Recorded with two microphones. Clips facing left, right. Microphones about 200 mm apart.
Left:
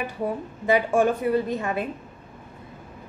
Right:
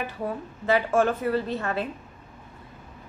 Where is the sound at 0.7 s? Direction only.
15° left (ahead or behind).